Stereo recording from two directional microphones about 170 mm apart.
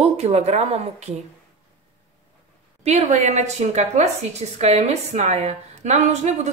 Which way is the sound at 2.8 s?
40° right (ahead or behind).